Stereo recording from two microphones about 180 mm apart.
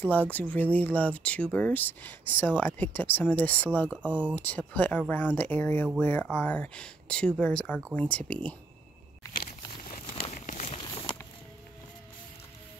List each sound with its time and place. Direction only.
0.0 s speech: 10° left (ahead or behind)
10.2 s crumpling: 40° left (ahead or behind)